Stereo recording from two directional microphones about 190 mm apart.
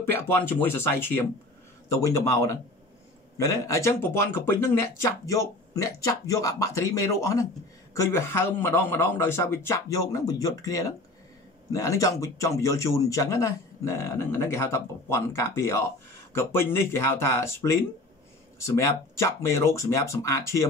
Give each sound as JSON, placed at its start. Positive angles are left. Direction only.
{"t": 0.3, "sound": "speech", "side_deg": 10}